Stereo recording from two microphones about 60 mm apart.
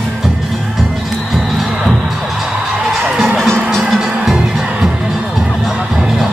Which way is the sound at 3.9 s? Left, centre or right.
Centre.